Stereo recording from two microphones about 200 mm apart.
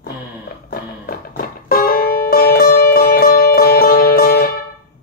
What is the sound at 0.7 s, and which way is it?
Music, 45° left (ahead or behind).